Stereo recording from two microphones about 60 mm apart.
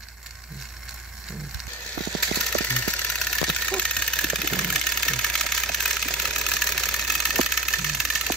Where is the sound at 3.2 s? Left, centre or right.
Centre.